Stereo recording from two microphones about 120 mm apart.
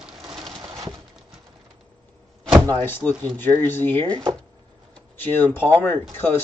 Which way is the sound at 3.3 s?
15° left (ahead or behind).